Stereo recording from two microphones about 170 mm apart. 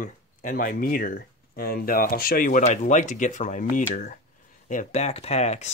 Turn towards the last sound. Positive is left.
turn(degrees=40)  # may be behind; listen again after turning